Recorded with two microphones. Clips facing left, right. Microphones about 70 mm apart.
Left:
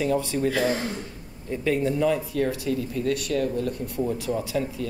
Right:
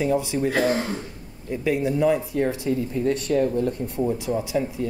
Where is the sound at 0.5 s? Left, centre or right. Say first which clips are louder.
Right 2 dB; right.